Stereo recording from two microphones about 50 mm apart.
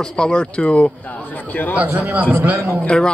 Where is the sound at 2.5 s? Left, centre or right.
Right.